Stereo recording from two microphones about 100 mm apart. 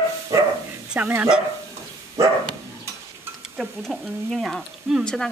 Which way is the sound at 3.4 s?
Centre (ahead or behind).